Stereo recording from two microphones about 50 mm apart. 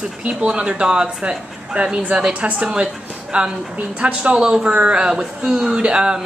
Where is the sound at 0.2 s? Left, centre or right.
Centre.